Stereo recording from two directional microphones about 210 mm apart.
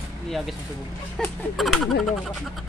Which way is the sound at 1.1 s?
Centre (ahead or behind).